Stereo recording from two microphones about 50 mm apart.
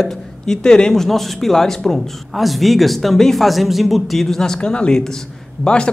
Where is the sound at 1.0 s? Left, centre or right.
Centre.